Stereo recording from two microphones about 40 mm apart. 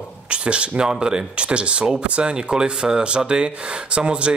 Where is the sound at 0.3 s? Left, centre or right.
Right.